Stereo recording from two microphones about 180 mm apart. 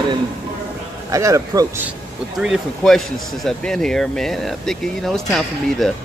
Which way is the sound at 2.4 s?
Centre (ahead or behind).